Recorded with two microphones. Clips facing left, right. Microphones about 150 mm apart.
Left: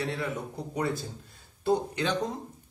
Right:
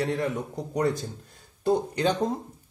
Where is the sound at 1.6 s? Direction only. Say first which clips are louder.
Right 3 dB; 40° right (ahead or behind).